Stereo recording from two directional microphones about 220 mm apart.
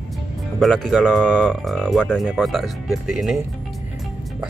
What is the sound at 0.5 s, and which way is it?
Speech, centre (ahead or behind).